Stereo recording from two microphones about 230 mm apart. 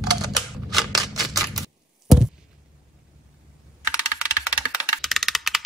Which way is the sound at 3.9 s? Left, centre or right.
Centre.